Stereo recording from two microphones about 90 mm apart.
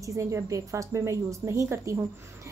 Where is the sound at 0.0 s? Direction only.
35° right (ahead or behind).